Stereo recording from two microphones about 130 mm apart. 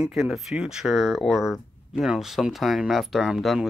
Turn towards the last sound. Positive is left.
turn(degrees=-5)  # may be behind; listen again after turning